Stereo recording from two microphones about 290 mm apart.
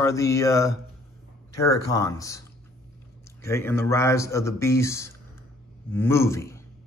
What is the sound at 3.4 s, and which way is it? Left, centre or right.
Speech, centre.